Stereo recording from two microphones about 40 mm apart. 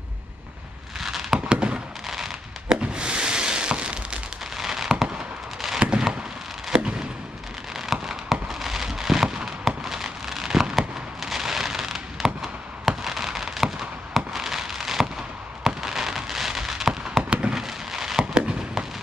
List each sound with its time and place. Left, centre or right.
0.9 s fireworks: centre
1.5 s fireworks: right
2.0 s fireworks: centre
2.9 s a sound: right
4.6 s fireworks: centre
5.8 s fireworks: right
7.7 s fireworks: centre
17.2 s fireworks: right
17.6 s a sound: centre
18.2 s fireworks: right